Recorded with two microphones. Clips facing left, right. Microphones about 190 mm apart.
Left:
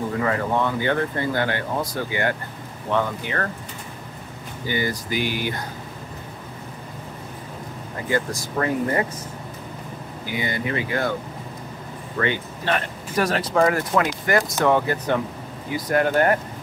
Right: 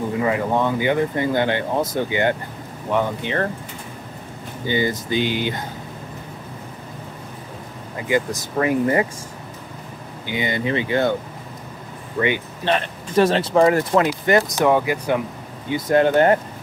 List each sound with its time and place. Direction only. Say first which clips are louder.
0.2 s speech: right 3 dB; 15° right (ahead or behind)
4.6 s speech: right 4 dB; 20° right (ahead or behind)
8.1 s speech: right 3 dB; 15° right (ahead or behind)
10.2 s speech: right 4 dB; 20° right (ahead or behind)
12.2 s speech: right 3 dB; 20° right (ahead or behind)
15.7 s speech: right 4 dB; 25° right (ahead or behind)